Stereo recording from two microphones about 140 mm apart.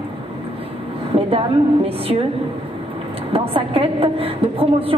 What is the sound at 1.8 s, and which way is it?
Speech, 45° right (ahead or behind).